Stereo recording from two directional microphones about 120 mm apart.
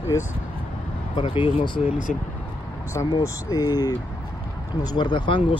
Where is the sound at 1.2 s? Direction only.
45° left (ahead or behind).